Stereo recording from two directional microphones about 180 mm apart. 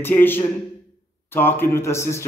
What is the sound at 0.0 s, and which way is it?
Speech, 10° left (ahead or behind).